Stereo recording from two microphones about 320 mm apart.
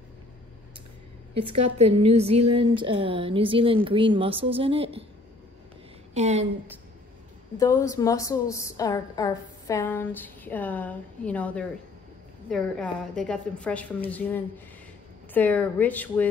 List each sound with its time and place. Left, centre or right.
1.3 s a woman's voice: centre
6.1 s a woman's voice: right
7.5 s a woman's voice: centre